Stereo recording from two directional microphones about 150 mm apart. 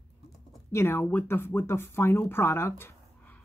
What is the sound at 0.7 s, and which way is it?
Speech, 15° left (ahead or behind).